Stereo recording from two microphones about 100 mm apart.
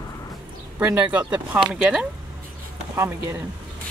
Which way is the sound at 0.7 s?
15° right (ahead or behind).